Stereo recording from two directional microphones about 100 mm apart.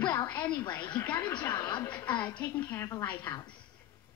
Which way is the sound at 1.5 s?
45° left (ahead or behind).